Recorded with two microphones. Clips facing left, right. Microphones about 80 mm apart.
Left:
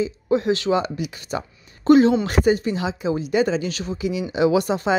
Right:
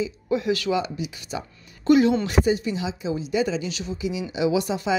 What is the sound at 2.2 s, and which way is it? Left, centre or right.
A woman's voice, left.